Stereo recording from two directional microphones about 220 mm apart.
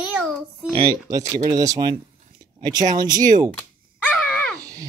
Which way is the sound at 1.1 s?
15° right (ahead or behind).